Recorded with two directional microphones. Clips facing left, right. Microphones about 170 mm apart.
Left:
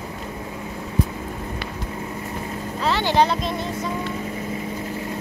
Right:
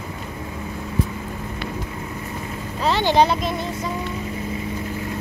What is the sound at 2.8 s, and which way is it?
Speech, 15° right (ahead or behind).